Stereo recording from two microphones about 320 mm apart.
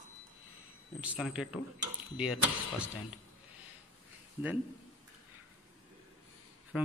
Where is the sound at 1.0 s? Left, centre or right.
Centre.